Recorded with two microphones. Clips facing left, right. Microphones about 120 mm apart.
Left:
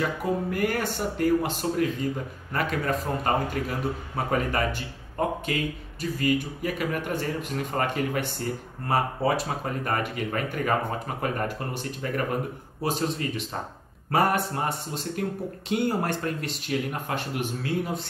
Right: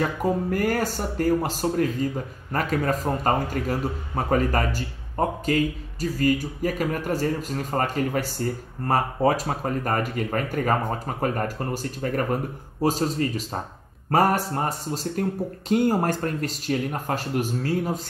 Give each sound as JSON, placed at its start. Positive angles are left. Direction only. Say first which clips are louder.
{"t": 0.0, "sound": "speech", "louder": "right 3 dB", "side_deg": -40}